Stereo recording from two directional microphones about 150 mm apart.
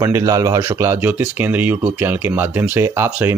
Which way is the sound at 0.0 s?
20° right (ahead or behind).